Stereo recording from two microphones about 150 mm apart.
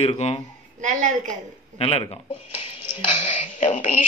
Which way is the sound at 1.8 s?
40° left (ahead or behind).